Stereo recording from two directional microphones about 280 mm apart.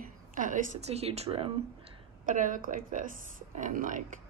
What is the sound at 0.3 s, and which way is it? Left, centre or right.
A woman's voice, right.